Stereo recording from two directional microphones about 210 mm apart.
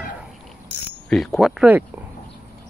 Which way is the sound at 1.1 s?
Centre (ahead or behind).